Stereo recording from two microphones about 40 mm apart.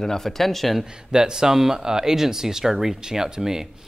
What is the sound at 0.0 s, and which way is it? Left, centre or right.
Speech, centre.